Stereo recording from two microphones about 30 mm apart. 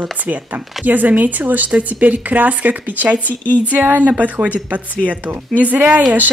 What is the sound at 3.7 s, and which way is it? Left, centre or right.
Speech, right.